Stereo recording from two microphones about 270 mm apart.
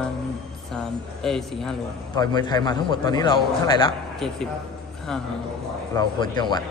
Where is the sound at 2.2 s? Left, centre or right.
Centre.